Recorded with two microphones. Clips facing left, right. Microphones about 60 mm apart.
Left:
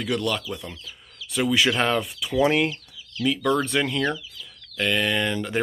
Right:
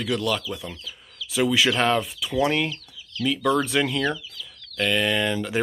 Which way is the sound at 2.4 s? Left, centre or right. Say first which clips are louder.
Left 2 dB; centre.